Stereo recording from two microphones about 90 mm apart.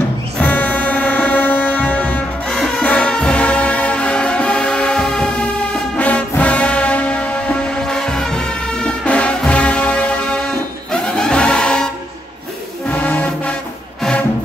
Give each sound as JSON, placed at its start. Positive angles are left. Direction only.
{"t": 0.4, "sound": "music", "side_deg": 15}